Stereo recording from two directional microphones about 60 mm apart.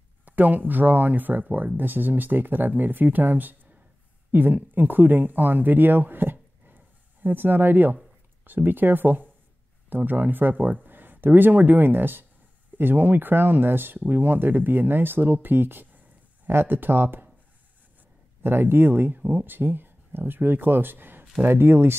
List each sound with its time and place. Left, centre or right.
0.2 s speech: right
18.4 s speech: right